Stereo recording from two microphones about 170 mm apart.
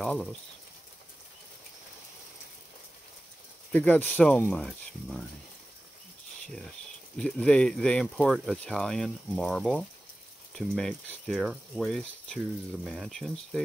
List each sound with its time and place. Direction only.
0.0 s speech: 5° left (ahead or behind)
3.7 s speech: 10° left (ahead or behind)
7.2 s speech: 5° left (ahead or behind)